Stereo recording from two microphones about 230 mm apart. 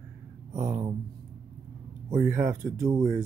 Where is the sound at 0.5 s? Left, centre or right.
Centre.